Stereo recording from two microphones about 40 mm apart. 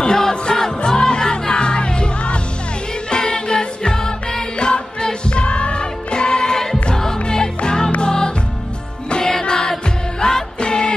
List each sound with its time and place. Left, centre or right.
0.0 s music: centre